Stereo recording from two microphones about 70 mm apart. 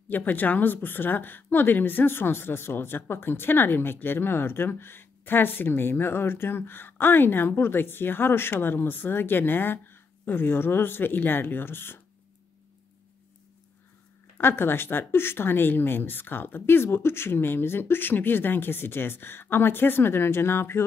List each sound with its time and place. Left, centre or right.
0.1 s speech: left
14.4 s speech: left